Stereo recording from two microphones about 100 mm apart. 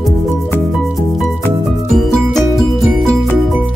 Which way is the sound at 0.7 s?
Centre (ahead or behind).